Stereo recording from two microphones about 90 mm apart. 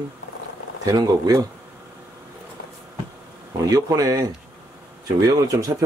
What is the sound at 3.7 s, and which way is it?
Speech, 40° right (ahead or behind).